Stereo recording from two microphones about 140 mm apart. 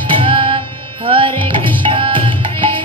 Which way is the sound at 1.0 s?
40° right (ahead or behind).